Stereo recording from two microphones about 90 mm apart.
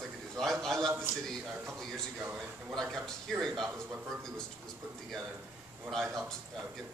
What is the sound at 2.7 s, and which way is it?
A man's voice, 5° left (ahead or behind).